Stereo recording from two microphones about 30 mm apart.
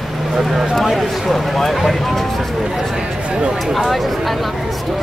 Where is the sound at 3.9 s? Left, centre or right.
Centre.